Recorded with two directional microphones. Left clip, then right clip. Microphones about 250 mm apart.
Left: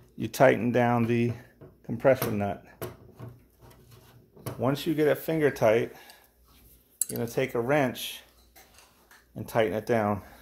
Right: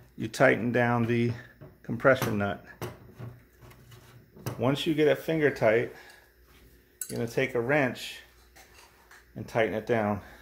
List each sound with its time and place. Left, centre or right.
0.2 s speech: centre
4.6 s speech: centre; by 6.0 s left
7.1 s speech: left
9.3 s speech: left